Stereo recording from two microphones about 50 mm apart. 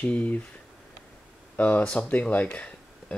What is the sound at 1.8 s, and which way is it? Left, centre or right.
Speech, centre.